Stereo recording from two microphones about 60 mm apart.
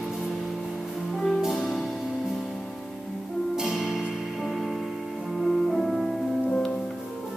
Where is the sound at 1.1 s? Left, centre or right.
Centre.